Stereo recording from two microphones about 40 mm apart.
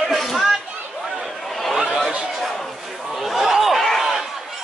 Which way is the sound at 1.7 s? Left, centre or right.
Centre.